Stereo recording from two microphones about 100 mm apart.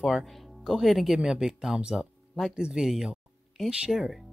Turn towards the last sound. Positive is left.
turn(degrees=-5)  # may be behind; listen again after turning